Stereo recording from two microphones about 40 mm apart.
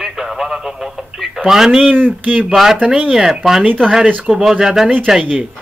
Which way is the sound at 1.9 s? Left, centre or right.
Right.